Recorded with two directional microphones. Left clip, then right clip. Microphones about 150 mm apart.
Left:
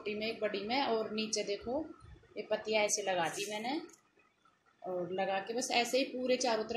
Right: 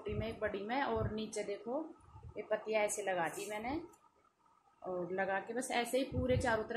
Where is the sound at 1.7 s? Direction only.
10° right (ahead or behind).